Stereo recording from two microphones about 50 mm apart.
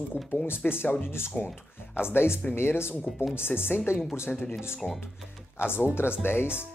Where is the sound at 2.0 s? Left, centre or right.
Left.